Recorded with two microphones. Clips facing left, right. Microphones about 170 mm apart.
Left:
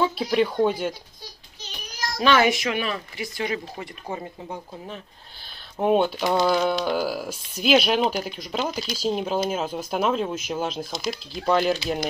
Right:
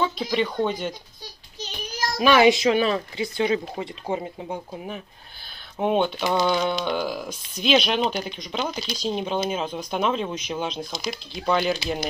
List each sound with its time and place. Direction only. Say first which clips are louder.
0.0 s speech: left 2 dB; 5° left (ahead or behind)
2.1 s speech: right 3 dB; 15° right (ahead or behind)
5.8 s speech: left 2 dB; 5° left (ahead or behind)